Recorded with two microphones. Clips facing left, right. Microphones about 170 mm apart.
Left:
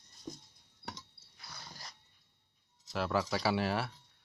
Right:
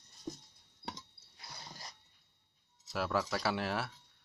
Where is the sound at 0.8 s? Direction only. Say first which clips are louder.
Right 1 dB; 20° right (ahead or behind).